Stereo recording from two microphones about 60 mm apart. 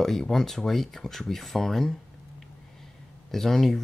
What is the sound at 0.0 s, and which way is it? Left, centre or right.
Speech, centre.